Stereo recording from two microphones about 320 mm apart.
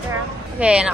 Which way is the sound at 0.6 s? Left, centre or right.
Centre.